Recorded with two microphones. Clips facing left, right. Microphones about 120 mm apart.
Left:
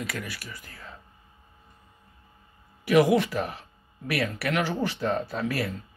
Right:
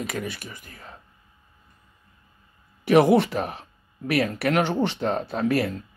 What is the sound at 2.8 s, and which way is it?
Speech, 30° right (ahead or behind).